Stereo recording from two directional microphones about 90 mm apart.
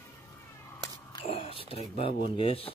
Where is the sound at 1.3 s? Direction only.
90° left.